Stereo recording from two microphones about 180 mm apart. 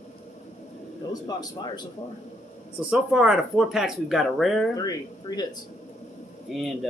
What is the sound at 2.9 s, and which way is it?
Speech, 5° right (ahead or behind).